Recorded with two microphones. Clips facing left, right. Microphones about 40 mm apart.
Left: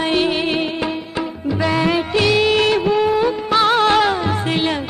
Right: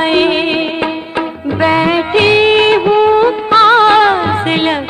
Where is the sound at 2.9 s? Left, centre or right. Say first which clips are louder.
Right 7 dB; right.